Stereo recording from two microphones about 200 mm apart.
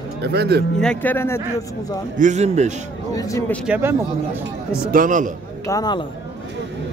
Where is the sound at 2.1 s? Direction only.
35° right (ahead or behind).